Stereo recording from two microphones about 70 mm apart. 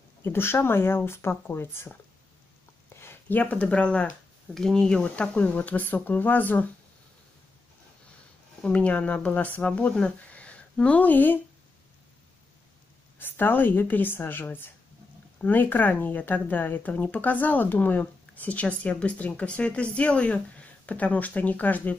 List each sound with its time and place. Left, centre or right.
0.2 s speech: left
3.0 s speech: left
8.6 s speech: centre
13.2 s speech: left